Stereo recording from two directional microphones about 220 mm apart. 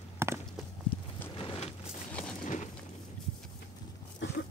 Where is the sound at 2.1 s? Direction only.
5° left (ahead or behind).